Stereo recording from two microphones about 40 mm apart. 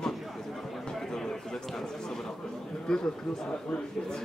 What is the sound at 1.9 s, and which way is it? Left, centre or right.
Speech, centre.